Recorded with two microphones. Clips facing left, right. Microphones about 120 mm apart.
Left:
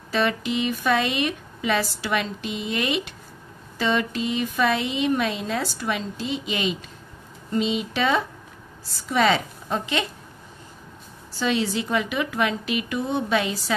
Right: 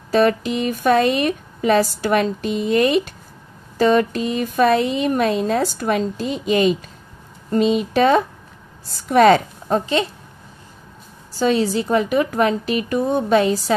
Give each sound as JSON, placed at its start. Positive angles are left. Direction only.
{"t": 0.1, "sound": "speech", "side_deg": -40}
{"t": 11.3, "sound": "a woman's voice", "side_deg": -40}